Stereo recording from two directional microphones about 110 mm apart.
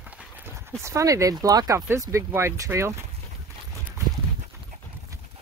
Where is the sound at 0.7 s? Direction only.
25° right (ahead or behind).